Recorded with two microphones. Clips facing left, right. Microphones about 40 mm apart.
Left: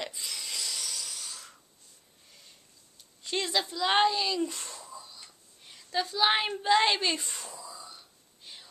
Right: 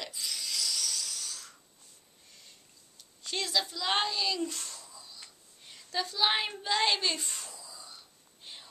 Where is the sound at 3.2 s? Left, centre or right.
Left.